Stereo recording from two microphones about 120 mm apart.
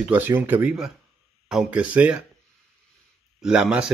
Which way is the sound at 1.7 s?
10° right (ahead or behind).